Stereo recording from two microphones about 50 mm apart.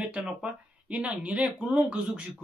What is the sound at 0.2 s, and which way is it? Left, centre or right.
Speech, right.